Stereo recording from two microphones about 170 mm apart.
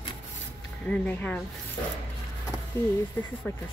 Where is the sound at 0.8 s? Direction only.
10° left (ahead or behind).